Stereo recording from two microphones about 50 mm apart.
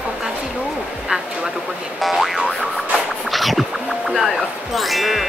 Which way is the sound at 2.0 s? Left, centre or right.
Centre.